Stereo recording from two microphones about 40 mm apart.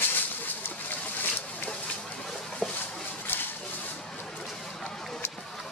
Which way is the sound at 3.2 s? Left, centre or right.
Left.